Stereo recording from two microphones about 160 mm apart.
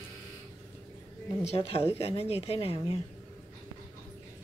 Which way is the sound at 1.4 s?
40° left (ahead or behind).